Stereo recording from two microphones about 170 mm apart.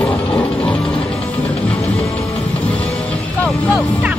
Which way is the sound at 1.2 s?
35° left (ahead or behind).